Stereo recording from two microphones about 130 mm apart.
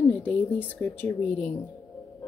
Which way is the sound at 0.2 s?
15° left (ahead or behind).